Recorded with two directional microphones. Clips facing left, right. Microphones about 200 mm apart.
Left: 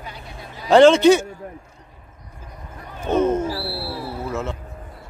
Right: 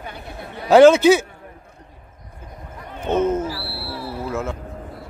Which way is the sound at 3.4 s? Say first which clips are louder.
Left 3 dB; 25° left (ahead or behind).